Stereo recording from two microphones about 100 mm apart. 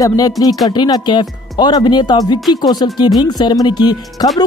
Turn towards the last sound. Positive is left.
turn(degrees=45)  # may be behind; listen again after turning